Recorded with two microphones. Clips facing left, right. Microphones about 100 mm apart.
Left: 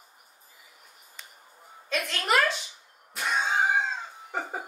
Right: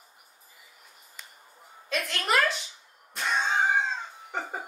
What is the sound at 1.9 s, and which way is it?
Speech, centre (ahead or behind).